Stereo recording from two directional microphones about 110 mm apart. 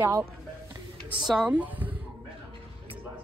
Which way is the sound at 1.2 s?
10° right (ahead or behind).